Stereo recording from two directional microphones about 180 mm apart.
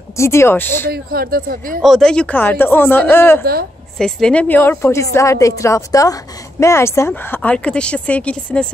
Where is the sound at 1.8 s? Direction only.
Centre (ahead or behind).